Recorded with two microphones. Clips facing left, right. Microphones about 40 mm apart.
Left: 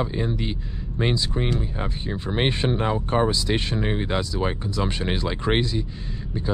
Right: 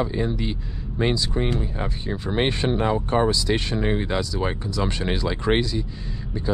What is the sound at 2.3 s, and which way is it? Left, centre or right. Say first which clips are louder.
A man's voice: right 1 dB; centre.